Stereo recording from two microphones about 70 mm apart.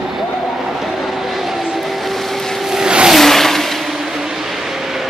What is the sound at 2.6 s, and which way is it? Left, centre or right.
Vehicle, centre.